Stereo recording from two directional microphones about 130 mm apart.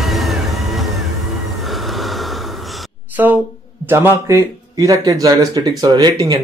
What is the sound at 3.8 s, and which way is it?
A man's voice, 20° right (ahead or behind).